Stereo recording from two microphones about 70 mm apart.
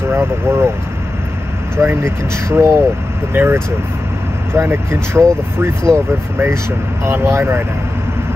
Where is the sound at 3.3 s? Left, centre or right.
Right.